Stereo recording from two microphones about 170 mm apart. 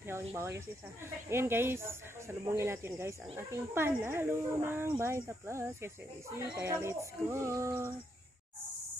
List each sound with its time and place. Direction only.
0.1 s speech: 15° right (ahead or behind)